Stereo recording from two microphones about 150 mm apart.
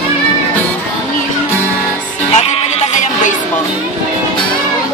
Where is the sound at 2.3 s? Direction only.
45° left (ahead or behind).